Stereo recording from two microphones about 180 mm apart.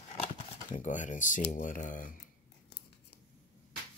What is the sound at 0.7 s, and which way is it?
Speech, 45° left (ahead or behind).